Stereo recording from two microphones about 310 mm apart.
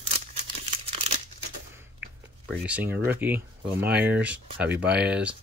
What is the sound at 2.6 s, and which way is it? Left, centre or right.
Speech, centre.